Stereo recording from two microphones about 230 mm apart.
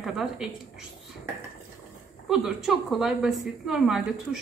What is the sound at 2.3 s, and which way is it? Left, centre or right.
Speech, centre.